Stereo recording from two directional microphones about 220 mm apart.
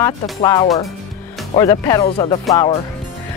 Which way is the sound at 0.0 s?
15° left (ahead or behind).